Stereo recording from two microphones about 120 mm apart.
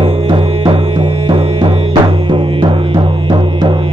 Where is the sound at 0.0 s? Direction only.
45° right (ahead or behind).